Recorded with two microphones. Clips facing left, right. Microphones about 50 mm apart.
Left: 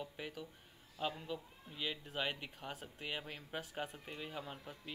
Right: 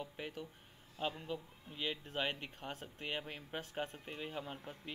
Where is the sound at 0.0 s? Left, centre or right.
Centre.